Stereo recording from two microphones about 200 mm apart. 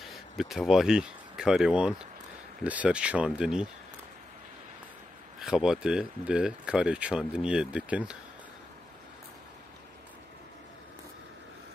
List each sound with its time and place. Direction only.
0.4 s speech: centre (ahead or behind)
5.4 s speech: 5° right (ahead or behind)